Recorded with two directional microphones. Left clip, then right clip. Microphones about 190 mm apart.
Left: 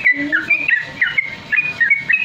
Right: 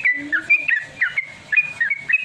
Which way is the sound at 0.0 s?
20° right (ahead or behind).